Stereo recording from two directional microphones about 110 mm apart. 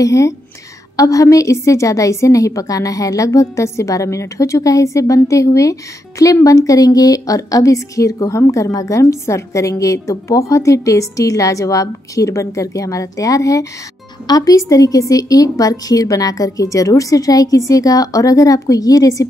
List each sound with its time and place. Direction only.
0.0 s a woman's voice: 30° left (ahead or behind)